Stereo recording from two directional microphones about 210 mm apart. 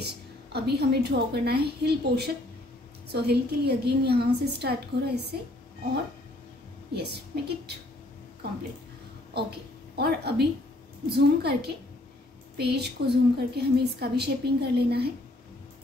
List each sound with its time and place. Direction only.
0.0 s a woman's voice: 50° right (ahead or behind)
6.9 s a woman's voice: 50° right (ahead or behind)
9.9 s a woman's voice: 50° right (ahead or behind)